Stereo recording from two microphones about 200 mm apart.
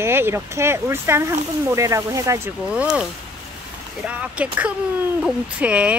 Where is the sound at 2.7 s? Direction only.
5° right (ahead or behind).